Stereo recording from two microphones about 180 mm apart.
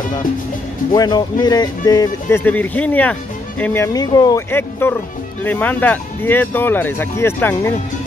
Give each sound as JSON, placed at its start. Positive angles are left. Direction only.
{"t": 0.9, "sound": "speech", "side_deg": 20}
{"t": 2.2, "sound": "speech", "side_deg": 10}